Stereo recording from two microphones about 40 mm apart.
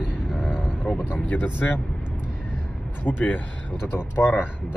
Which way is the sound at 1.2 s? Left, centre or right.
Left.